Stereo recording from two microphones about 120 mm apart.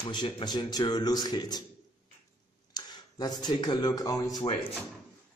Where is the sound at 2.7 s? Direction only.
35° left (ahead or behind).